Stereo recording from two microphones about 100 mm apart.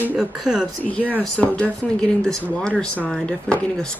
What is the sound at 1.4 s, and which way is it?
Speech, 15° left (ahead or behind).